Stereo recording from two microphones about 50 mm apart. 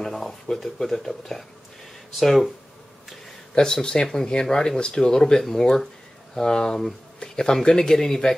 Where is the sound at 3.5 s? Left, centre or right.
Centre.